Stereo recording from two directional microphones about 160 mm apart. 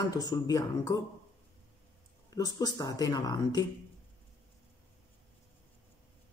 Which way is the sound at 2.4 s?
25° left (ahead or behind).